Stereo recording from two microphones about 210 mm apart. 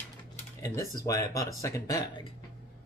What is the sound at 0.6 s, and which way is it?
Speech, 15° left (ahead or behind).